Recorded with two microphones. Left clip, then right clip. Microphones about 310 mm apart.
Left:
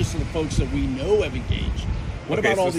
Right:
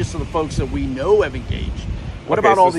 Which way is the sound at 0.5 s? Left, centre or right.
Centre.